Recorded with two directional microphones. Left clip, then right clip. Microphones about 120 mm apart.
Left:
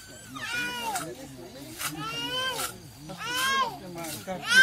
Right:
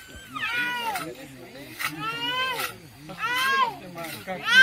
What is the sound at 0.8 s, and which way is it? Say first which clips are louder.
Speech: right 3 dB; centre (ahead or behind).